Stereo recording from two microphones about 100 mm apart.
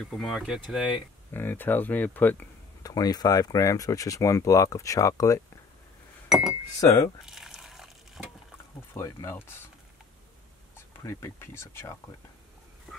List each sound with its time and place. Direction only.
0.0 s speech: centre (ahead or behind)
1.3 s speech: 20° left (ahead or behind)
2.8 s speech: 40° left (ahead or behind)
6.2 s chink: centre (ahead or behind)
6.8 s speech: 30° left (ahead or behind)
7.2 s a sound: 5° right (ahead or behind)
8.9 s speech: 25° left (ahead or behind)
10.9 s speech: 25° left (ahead or behind)